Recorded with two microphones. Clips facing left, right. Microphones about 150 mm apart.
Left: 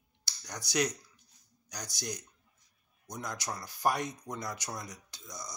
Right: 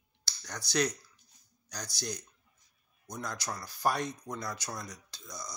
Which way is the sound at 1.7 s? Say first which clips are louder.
Right 1 dB; 15° left (ahead or behind).